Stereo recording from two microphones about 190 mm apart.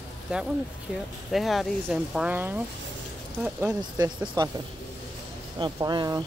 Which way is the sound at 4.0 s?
20° right (ahead or behind).